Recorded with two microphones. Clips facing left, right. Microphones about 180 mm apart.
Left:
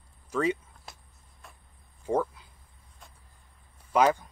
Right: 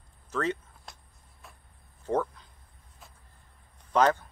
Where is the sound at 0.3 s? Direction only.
10° left (ahead or behind).